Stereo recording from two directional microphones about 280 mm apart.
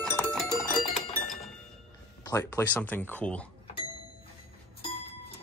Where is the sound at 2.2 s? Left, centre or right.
Centre.